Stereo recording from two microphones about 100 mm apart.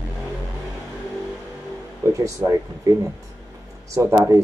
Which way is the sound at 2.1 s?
35° right (ahead or behind).